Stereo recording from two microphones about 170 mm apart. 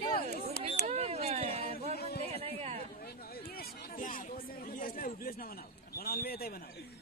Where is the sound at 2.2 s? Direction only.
35° right (ahead or behind).